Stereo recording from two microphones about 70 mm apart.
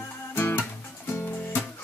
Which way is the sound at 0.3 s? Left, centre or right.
Left.